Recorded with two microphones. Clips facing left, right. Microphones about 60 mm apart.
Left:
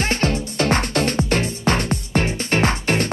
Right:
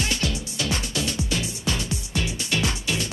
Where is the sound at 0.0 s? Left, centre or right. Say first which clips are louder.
Left 6 dB; left.